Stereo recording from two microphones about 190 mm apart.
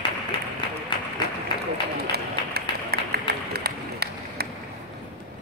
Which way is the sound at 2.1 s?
55° right (ahead or behind).